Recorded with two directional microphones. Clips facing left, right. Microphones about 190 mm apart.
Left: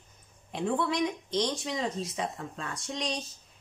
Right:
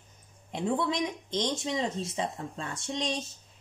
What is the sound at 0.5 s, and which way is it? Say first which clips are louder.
Speech: even; 15° right (ahead or behind).